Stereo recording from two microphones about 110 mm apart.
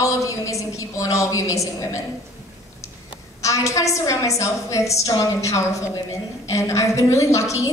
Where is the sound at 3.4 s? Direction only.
30° left (ahead or behind).